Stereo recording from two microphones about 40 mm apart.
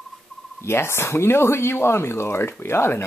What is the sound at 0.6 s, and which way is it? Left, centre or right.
Speech, left.